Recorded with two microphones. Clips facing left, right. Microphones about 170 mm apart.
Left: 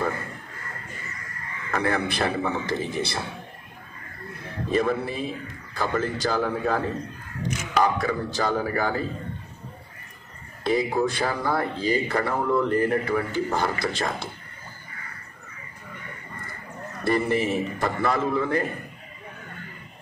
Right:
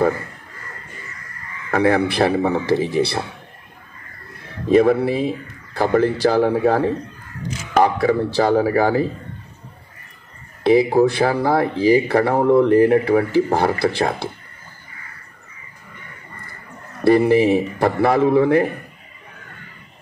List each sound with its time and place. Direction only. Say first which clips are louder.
1.7 s speech: right 9 dB; 60° right (ahead or behind)
4.7 s a man's voice: right 10 dB; 65° right (ahead or behind)
10.6 s speech: right 9 dB; 65° right (ahead or behind)
17.0 s speech: right 10 dB; 65° right (ahead or behind)